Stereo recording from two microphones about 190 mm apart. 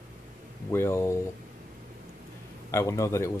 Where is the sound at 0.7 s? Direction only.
15° left (ahead or behind).